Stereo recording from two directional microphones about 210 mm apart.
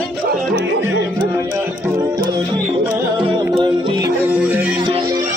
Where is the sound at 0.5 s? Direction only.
55° right (ahead or behind).